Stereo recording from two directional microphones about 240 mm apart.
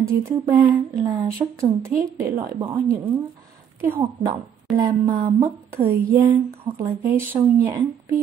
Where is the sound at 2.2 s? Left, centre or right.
Right.